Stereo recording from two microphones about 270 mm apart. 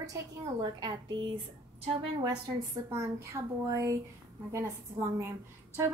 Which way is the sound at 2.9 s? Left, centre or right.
Centre.